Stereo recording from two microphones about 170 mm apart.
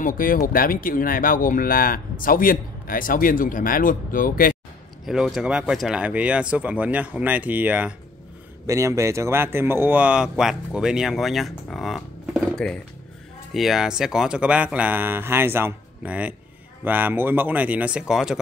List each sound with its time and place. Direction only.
0.0 s speech: 55° left (ahead or behind)
5.0 s speech: centre (ahead or behind)